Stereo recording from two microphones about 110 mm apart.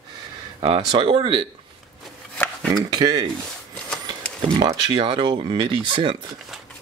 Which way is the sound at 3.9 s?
10° left (ahead or behind).